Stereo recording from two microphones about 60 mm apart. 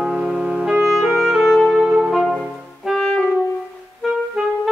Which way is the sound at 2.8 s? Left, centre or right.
Centre.